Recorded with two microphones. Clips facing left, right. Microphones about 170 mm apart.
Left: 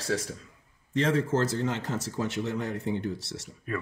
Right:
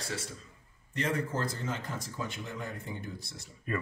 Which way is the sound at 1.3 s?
80° left.